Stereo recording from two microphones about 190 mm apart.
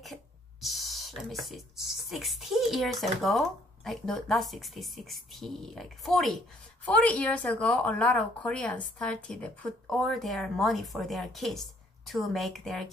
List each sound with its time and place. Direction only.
0.0 s a woman's voice: centre (ahead or behind)